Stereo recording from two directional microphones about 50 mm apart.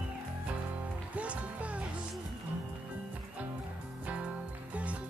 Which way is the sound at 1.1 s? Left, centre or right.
Right.